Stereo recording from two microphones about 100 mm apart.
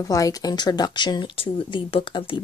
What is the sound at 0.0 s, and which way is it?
Speech, 35° left (ahead or behind).